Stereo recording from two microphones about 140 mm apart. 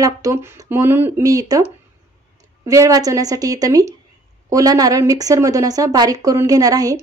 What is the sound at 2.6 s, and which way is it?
Speech, 25° right (ahead or behind).